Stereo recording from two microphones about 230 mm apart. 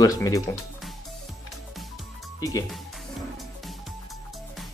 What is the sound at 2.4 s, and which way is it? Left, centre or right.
Speech, centre.